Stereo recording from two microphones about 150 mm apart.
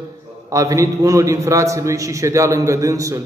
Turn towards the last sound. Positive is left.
turn(degrees=-20)  # may be behind; listen again after turning